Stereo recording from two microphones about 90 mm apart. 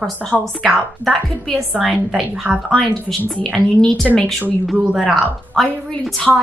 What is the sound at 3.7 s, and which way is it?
Speech, 5° left (ahead or behind).